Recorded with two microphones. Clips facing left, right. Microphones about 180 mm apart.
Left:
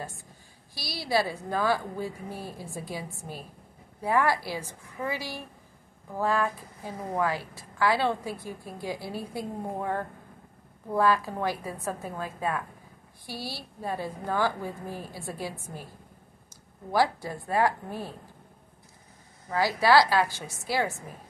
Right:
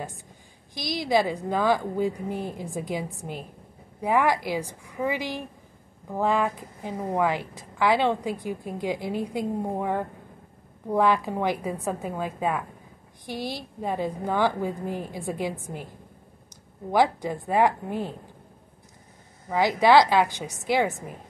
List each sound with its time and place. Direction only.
0.7 s a woman's voice: 15° right (ahead or behind)
16.9 s a woman's voice: 20° right (ahead or behind)
19.5 s a woman's voice: 20° right (ahead or behind)